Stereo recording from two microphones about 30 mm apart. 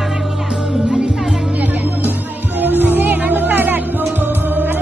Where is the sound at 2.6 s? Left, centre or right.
Right.